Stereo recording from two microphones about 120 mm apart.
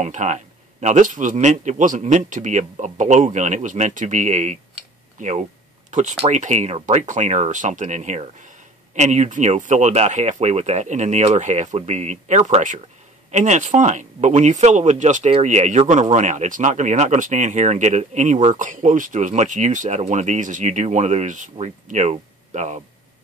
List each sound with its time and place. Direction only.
0.0 s speech: 80° right
5.9 s speech: 85° right